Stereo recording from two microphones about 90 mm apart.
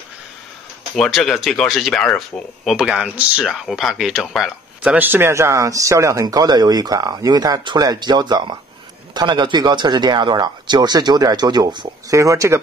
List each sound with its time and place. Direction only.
0.9 s speech: 5° left (ahead or behind)
4.8 s speech: 20° right (ahead or behind); by 6.2 s 35° right (ahead or behind)
6.2 s speech: 45° right (ahead or behind)
12.1 s speech: 35° right (ahead or behind)